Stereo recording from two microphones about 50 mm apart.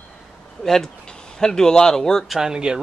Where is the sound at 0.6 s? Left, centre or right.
Centre.